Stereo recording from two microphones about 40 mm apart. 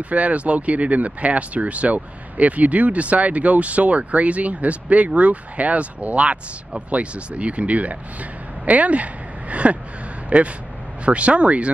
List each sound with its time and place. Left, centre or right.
0.1 s speech: right